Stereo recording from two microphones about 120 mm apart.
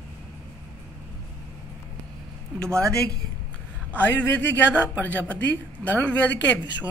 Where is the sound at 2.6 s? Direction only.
25° right (ahead or behind).